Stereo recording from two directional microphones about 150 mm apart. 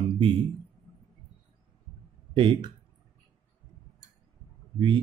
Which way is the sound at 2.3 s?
30° right (ahead or behind).